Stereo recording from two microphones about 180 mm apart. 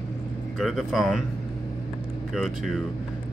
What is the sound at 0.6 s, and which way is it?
Speech, centre (ahead or behind).